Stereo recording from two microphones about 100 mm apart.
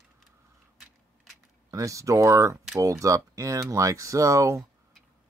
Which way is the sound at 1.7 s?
30° right (ahead or behind).